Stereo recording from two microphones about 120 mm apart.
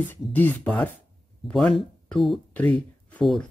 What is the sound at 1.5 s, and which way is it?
Speech, 5° left (ahead or behind).